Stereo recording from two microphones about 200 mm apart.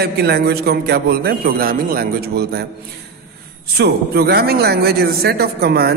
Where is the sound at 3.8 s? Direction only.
50° right (ahead or behind).